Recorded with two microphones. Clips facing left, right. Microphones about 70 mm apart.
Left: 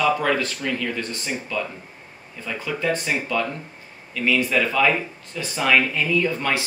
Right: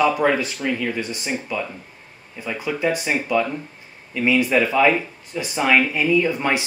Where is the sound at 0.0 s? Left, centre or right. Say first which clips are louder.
Right 2 dB; centre.